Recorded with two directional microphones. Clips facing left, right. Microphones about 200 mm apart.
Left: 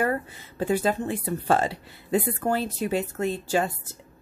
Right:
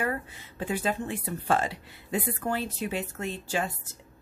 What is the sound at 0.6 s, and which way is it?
Speech, 40° left (ahead or behind).